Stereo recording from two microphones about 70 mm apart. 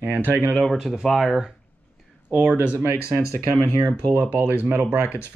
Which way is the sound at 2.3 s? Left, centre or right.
Right.